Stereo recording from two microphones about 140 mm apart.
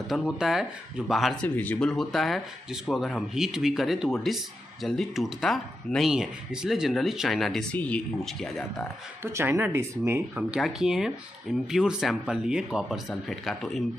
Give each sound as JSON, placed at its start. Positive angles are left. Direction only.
{"t": 0.4, "sound": "speech", "side_deg": -5}
{"t": 9.2, "sound": "speech", "side_deg": -15}
{"t": 10.3, "sound": "speech", "side_deg": -5}